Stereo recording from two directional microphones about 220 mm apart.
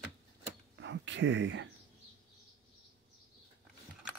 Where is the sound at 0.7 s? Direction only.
55° right (ahead or behind).